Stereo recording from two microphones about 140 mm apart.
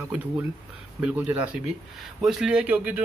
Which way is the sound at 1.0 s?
10° right (ahead or behind).